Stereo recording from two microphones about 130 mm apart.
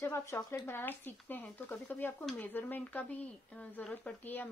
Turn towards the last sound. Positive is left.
turn(degrees=15)  # may be behind; listen again after turning